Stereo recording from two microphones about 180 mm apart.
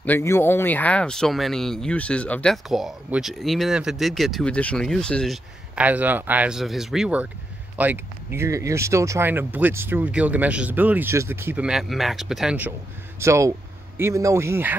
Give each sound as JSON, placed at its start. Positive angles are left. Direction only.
{"t": 0.0, "sound": "speech", "side_deg": 10}